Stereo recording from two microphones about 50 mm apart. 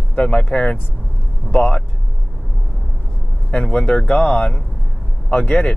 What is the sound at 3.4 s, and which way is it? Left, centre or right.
Speech, left.